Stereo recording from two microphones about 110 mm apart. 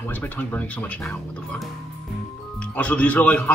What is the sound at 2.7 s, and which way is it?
Speech, 15° left (ahead or behind).